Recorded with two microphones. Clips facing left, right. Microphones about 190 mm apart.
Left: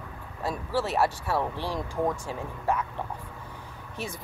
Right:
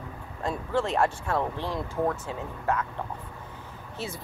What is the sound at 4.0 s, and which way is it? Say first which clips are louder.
Speech: even; 15° left (ahead or behind).